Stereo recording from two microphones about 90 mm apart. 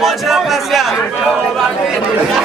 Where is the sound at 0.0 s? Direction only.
Centre (ahead or behind).